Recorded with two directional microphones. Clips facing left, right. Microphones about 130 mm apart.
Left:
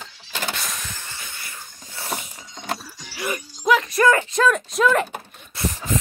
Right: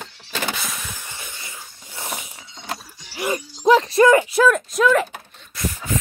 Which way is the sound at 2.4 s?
45° left (ahead or behind).